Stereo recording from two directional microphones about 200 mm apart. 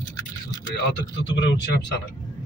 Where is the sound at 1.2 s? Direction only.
60° left (ahead or behind).